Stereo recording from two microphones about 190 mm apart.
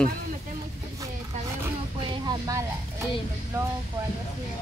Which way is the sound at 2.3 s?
20° right (ahead or behind).